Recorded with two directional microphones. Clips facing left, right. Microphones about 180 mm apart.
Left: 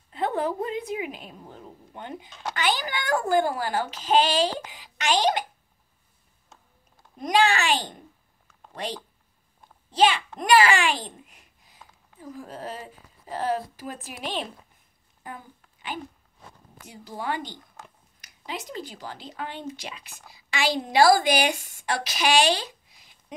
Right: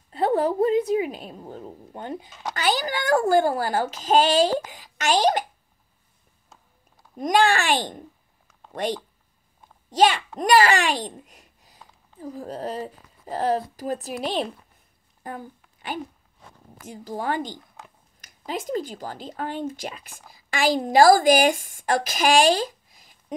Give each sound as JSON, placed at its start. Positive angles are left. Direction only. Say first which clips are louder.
{"t": 0.1, "sound": "a woman's voice", "louder": "right 5 dB", "side_deg": -40}
{"t": 7.2, "sound": "speech", "louder": "right 2 dB", "side_deg": -45}
{"t": 9.8, "sound": "a child's voice", "louder": "right 2 dB", "side_deg": -45}